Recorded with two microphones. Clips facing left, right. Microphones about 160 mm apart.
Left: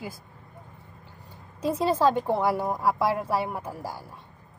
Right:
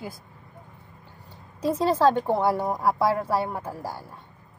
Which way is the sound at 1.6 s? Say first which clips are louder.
Right 2 dB; 5° left (ahead or behind).